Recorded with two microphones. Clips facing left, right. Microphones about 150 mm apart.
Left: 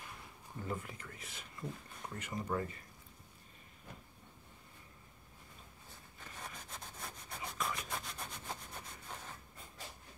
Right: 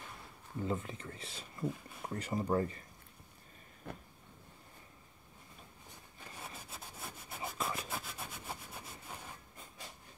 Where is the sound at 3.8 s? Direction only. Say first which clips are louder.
Right 7 dB; 60° right (ahead or behind).